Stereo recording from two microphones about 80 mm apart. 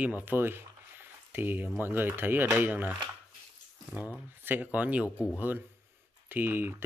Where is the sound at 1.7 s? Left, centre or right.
Right.